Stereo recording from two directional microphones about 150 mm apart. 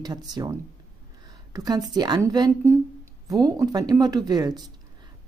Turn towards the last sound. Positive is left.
turn(degrees=-25)  # may be behind; listen again after turning